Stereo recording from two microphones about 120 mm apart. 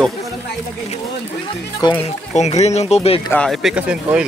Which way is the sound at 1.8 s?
35° left (ahead or behind).